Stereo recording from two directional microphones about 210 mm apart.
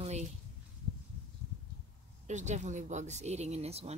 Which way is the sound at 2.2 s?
35° right (ahead or behind).